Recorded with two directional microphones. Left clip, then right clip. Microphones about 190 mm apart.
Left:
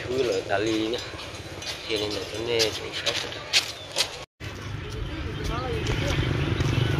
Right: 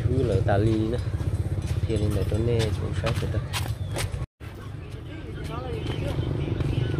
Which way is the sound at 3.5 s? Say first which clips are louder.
Left 13 dB; 55° right (ahead or behind).